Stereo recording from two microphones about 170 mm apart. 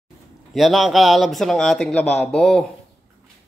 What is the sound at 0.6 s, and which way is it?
Speech, centre (ahead or behind).